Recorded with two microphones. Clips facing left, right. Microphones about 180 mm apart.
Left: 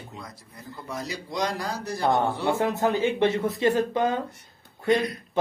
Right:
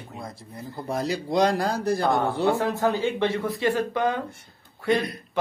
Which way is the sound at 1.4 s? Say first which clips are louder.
Right 7 dB; 55° right (ahead or behind).